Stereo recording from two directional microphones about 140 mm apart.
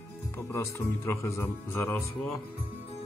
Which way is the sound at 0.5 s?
20° left (ahead or behind).